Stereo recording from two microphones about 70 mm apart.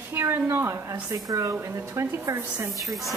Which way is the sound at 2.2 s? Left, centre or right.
Right.